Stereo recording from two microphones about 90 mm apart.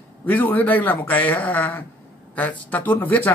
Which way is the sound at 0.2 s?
20° left (ahead or behind).